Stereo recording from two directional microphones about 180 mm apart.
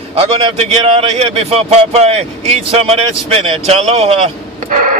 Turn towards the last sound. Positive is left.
turn(degrees=-45)  # may be behind; listen again after turning